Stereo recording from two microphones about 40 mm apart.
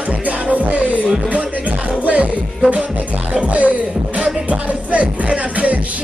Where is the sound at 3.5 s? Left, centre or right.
Right.